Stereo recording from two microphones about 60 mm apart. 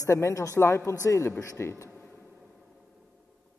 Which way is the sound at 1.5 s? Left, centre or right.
Left.